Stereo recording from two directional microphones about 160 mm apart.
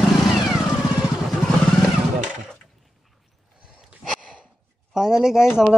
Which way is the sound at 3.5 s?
5° right (ahead or behind).